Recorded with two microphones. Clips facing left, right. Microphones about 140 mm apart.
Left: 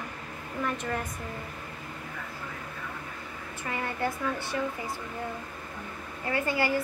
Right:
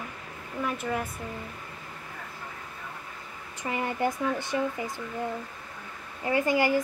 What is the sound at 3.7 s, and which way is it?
Speech, 20° right (ahead or behind).